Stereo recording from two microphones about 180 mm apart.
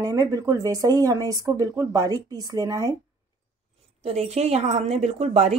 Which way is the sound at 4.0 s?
35° right (ahead or behind).